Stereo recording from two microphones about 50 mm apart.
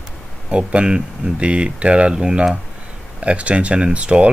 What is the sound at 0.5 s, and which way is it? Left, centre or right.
Speech, right.